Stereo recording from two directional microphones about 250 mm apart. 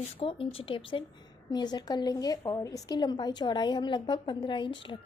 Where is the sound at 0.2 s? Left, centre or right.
Left.